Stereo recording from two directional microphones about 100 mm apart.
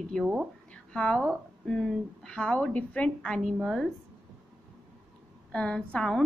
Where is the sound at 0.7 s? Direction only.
10° left (ahead or behind).